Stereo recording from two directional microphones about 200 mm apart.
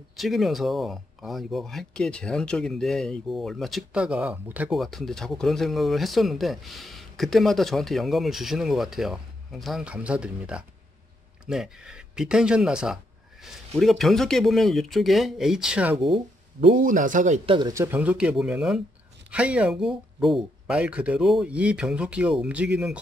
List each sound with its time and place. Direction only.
0.1 s speech: centre (ahead or behind)
16.8 s speech: 40° right (ahead or behind)
17.5 s speech: 20° right (ahead or behind); by 22.9 s 5° right (ahead or behind)